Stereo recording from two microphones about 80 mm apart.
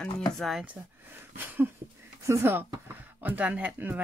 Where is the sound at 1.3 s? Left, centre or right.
Right.